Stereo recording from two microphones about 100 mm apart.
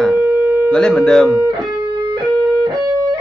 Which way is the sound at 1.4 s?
50° right (ahead or behind).